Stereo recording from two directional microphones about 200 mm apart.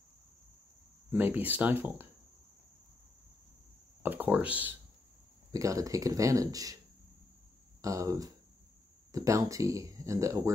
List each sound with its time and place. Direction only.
1.1 s speech: 10° right (ahead or behind)
4.0 s speech: 10° right (ahead or behind)
7.8 s speech: 15° right (ahead or behind)